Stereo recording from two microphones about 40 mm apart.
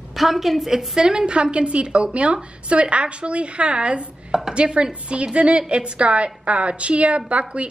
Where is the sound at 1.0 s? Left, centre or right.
Right.